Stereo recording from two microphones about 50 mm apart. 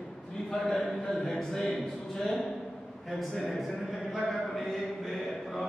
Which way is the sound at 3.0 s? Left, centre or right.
Centre.